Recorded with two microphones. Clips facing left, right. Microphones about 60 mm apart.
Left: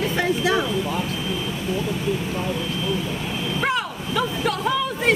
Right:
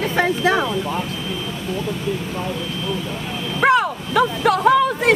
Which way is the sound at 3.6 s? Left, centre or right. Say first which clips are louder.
Right 10 dB; right.